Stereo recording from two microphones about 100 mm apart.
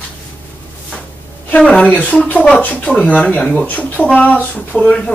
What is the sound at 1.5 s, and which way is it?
Speech, 10° left (ahead or behind).